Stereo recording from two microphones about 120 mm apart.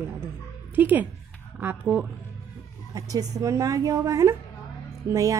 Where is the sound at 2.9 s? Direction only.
30° right (ahead or behind).